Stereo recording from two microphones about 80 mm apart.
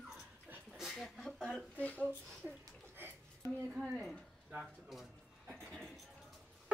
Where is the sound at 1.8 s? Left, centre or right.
Centre.